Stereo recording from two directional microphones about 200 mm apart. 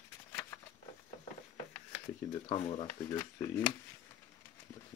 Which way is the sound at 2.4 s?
30° left (ahead or behind).